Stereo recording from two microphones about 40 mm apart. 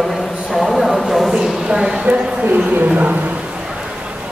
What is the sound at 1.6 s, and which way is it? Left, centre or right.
Speech, centre.